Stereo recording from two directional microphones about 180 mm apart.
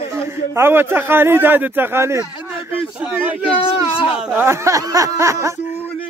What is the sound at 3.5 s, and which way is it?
Speech, 30° left (ahead or behind).